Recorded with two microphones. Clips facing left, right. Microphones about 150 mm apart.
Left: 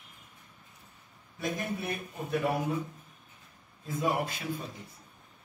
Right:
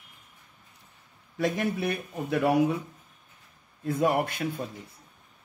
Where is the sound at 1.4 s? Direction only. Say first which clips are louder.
Right 7 dB; 90° right.